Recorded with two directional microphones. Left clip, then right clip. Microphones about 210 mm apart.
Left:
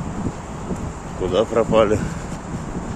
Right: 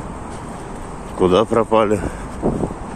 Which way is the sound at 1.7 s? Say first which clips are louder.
Left 1 dB; 15° right (ahead or behind).